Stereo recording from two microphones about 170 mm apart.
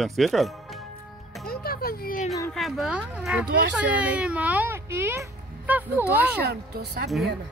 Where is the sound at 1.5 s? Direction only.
65° left (ahead or behind).